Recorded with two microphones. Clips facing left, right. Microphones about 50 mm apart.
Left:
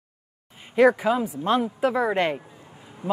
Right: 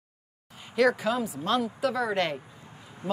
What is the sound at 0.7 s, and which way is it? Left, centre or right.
A woman's voice, left.